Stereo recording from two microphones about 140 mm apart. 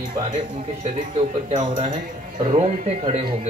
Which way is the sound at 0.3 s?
60° right (ahead or behind).